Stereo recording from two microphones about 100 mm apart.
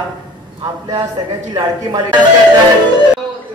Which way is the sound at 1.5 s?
45° right (ahead or behind).